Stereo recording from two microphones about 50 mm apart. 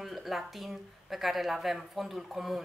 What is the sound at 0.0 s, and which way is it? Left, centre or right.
A woman's voice, centre.